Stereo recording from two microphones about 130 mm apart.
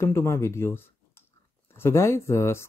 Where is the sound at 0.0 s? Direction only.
20° left (ahead or behind).